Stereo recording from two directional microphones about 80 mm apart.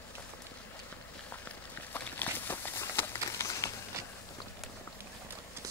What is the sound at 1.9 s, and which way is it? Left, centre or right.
Walk, left.